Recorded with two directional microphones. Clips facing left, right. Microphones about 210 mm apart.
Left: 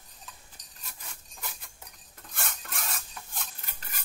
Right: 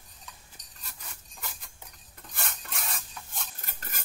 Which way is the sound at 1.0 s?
Centre (ahead or behind).